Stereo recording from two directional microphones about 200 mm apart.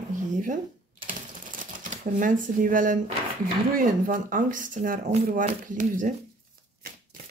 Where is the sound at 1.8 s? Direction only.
40° right (ahead or behind).